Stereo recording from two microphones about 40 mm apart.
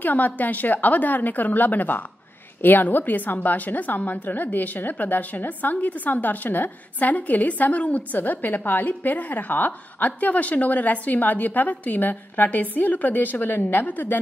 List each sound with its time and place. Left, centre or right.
0.0 s a woman's voice: left